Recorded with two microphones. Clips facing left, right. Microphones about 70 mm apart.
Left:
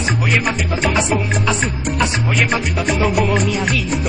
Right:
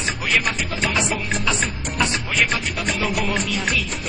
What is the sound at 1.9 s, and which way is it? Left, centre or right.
Music, centre.